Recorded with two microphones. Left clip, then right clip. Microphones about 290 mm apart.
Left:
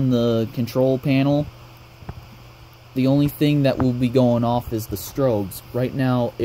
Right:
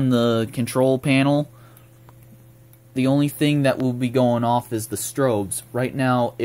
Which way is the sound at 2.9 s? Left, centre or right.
Centre.